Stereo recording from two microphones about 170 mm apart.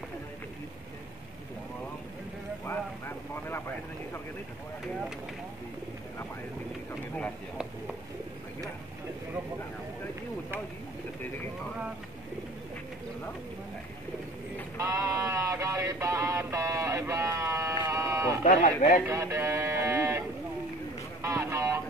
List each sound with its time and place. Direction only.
2.6 s vehicle: 15° left (ahead or behind)
14.8 s a sound: 20° right (ahead or behind)
17.8 s sheep: 20° right (ahead or behind)
18.4 s speech: 45° left (ahead or behind)
19.0 s a sound: 15° right (ahead or behind)
21.2 s vehicle: 15° right (ahead or behind)